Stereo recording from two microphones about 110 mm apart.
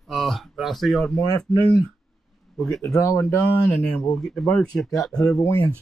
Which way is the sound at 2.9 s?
30° left (ahead or behind).